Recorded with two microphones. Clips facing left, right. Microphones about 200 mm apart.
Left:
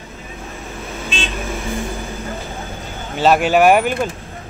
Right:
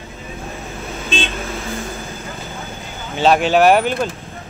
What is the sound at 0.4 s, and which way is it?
Vehicle, 15° right (ahead or behind).